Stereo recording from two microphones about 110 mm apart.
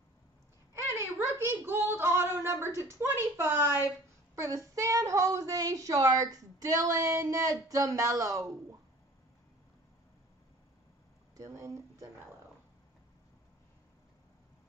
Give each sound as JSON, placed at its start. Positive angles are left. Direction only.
{"t": 0.9, "sound": "a woman's voice", "side_deg": -25}
{"t": 11.3, "sound": "speech", "side_deg": -30}